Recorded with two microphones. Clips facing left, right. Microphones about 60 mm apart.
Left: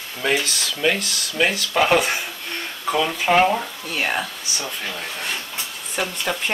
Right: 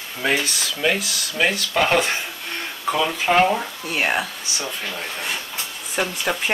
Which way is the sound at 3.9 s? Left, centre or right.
Centre.